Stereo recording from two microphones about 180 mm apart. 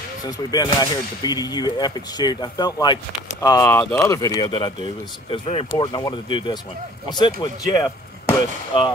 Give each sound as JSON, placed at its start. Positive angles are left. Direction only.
{"t": 0.3, "sound": "speech", "side_deg": 25}